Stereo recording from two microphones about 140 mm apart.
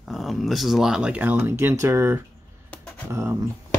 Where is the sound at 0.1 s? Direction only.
Centre (ahead or behind); by 3.3 s 25° right (ahead or behind).